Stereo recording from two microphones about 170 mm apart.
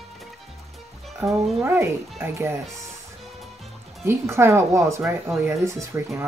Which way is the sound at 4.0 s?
15° right (ahead or behind).